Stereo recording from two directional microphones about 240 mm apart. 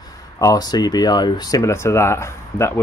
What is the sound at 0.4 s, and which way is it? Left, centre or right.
Speech, centre.